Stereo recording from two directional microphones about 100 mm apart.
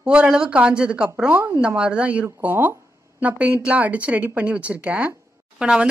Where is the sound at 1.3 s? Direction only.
30° right (ahead or behind).